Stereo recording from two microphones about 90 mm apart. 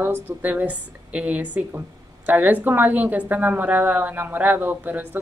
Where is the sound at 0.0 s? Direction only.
20° right (ahead or behind).